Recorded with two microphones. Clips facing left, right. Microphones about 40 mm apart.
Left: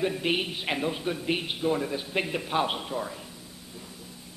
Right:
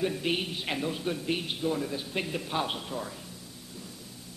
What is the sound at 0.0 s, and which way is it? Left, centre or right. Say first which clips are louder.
A man's voice: left 2 dB; centre.